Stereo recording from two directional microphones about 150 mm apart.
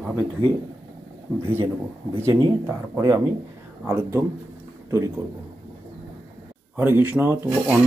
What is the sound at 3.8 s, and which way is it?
Speech, 15° right (ahead or behind).